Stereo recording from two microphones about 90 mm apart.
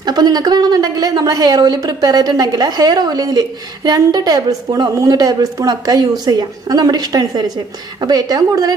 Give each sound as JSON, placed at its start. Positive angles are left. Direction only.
{"t": 0.0, "sound": "speech", "side_deg": -50}